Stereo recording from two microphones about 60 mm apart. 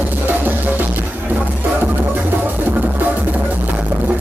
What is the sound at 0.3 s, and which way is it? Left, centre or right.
Music, right.